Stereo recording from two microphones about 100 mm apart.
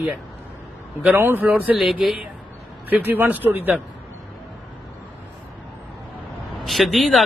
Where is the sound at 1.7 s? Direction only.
Centre (ahead or behind).